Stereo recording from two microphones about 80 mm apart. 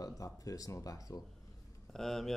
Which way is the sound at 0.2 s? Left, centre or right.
Left.